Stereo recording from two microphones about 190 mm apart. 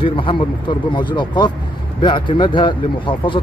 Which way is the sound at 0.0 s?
25° left (ahead or behind).